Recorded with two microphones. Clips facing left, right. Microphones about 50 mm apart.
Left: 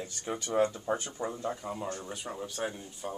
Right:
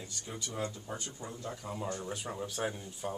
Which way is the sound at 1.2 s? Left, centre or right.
Left.